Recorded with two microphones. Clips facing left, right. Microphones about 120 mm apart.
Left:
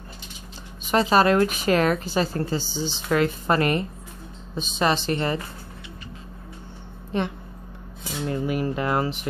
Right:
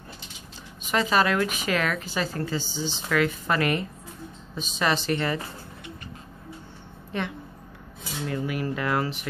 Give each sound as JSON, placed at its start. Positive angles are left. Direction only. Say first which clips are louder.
{"t": 0.9, "sound": "a woman's voice", "louder": "left 5 dB", "side_deg": 35}
{"t": 7.1, "sound": "speech", "louder": "left 4 dB", "side_deg": 30}